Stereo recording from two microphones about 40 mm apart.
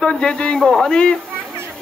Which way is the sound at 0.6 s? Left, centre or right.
Centre.